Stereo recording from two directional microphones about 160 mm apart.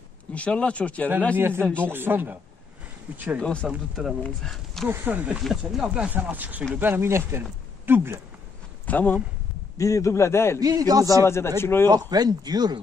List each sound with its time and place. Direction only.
0.3 s speech: 5° left (ahead or behind)
1.3 s speech: 15° right (ahead or behind)
3.3 s speech: 5° left (ahead or behind)
4.8 s speech: 10° right (ahead or behind)
8.8 s speech: 10° left (ahead or behind)
10.6 s speech: 20° right (ahead or behind)
11.2 s speech: 15° left (ahead or behind)
11.9 s speech: 25° right (ahead or behind)